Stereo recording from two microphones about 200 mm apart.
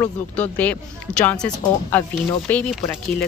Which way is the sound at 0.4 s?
10° left (ahead or behind).